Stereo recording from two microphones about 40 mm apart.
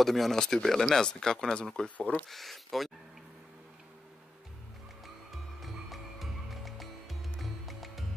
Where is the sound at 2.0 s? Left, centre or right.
Left.